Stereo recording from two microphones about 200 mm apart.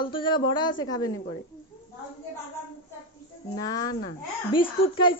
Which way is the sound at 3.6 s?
20° left (ahead or behind).